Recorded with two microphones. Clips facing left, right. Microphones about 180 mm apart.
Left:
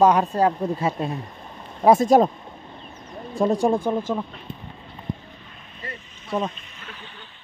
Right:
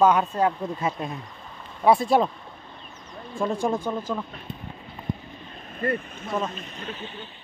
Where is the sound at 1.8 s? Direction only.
45° left (ahead or behind).